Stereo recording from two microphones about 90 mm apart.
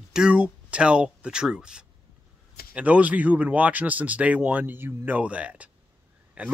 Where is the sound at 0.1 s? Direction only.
10° right (ahead or behind).